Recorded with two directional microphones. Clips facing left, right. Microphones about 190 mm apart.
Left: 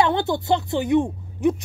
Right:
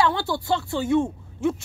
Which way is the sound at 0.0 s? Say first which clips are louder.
Left 3 dB; 20° left (ahead or behind).